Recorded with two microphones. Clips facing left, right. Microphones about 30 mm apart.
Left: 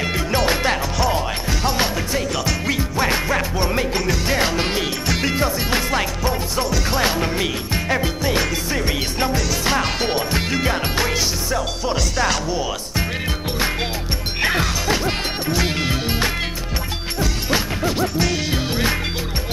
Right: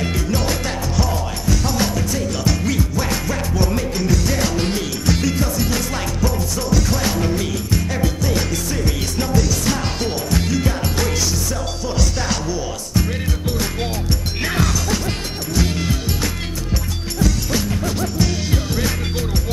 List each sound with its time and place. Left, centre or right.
1.1 s music: left
12.4 s speech: left
14.4 s music: left